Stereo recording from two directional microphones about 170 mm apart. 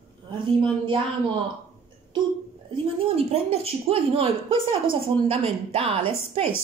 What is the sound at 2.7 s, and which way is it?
A woman's voice, 35° right (ahead or behind).